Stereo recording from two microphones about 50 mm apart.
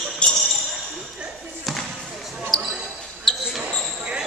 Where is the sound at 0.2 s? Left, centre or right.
Left.